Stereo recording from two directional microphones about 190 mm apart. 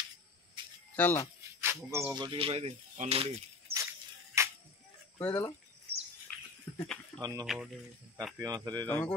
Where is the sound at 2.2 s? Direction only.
30° right (ahead or behind).